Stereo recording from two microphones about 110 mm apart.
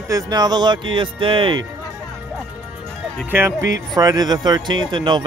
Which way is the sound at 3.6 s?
35° right (ahead or behind).